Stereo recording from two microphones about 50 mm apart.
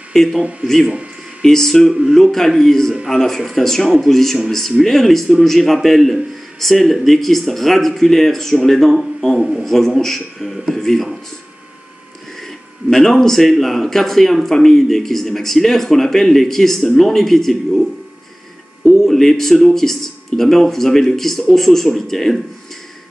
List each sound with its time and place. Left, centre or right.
0.4 s speech: right
0.7 s a man's voice: centre
9.7 s speech: centre
12.9 s speech: centre
18.9 s a man's voice: centre